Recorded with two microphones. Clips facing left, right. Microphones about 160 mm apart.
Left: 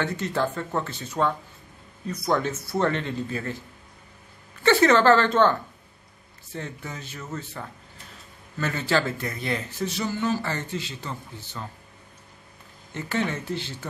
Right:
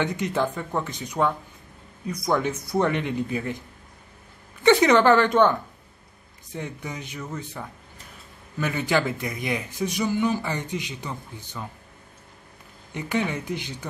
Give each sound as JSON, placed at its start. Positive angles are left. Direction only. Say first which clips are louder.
{"t": 0.0, "sound": "speech", "louder": "right 1 dB", "side_deg": -15}
{"t": 4.6, "sound": "speech", "louder": "right 1 dB", "side_deg": -15}
{"t": 12.9, "sound": "speech", "louder": "right 1 dB", "side_deg": -15}